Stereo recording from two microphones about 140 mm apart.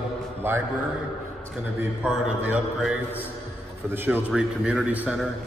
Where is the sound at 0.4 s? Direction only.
15° right (ahead or behind).